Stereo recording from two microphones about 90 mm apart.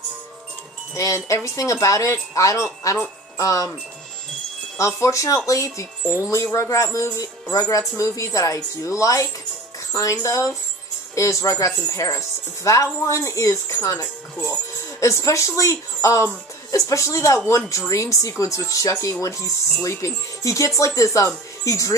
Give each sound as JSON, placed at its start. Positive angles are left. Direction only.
{"t": 0.9, "sound": "speech", "side_deg": 35}
{"t": 4.7, "sound": "speech", "side_deg": 35}